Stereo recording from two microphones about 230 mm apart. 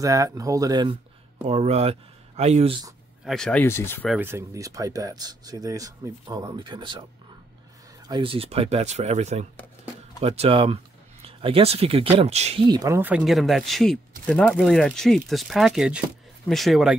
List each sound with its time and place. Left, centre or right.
0.0 s speech: centre
3.3 s speech: centre
4.1 s speech: centre
8.1 s speech: right; by 16.9 s centre